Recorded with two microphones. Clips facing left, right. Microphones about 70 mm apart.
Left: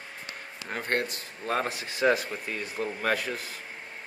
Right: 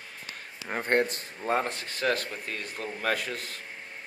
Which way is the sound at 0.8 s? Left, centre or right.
Right.